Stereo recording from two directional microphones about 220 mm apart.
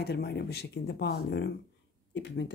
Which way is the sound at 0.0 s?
45° left (ahead or behind).